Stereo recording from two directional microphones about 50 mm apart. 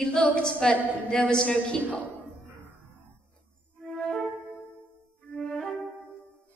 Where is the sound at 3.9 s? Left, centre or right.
Centre.